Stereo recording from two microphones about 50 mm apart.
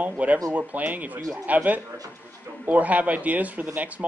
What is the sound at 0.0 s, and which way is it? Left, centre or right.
Speech, right.